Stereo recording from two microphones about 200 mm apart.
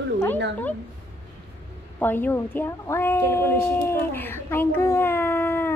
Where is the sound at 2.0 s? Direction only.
10° left (ahead or behind).